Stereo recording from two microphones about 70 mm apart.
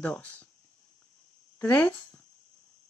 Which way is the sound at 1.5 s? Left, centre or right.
Left.